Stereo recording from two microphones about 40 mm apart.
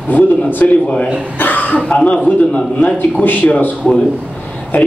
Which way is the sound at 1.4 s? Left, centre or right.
Left.